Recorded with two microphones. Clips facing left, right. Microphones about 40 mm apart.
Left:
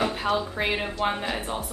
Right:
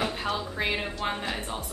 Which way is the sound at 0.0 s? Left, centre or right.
Centre.